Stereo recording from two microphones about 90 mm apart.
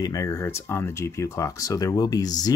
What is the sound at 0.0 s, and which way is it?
Speech, 40° left (ahead or behind).